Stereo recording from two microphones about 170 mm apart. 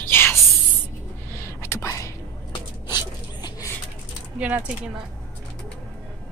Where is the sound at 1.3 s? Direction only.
15° left (ahead or behind).